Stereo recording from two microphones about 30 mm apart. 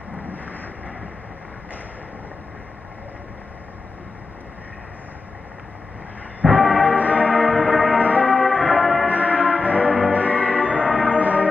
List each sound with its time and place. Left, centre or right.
6.4 s music: centre
6.8 s music: right
7.4 s music: right
8.0 s church bell: right
9.1 s church bell: right
10.9 s music: right